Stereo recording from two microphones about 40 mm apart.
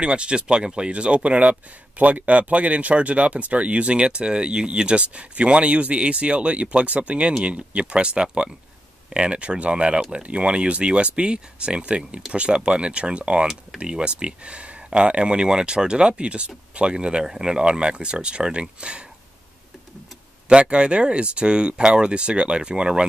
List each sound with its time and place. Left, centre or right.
0.0 s speech: right
20.4 s speech: right